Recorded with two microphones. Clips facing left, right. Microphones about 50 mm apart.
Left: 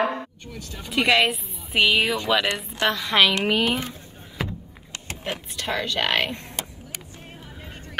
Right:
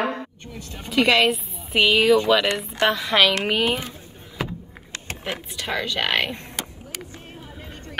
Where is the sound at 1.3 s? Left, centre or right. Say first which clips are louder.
Right 5 dB; centre.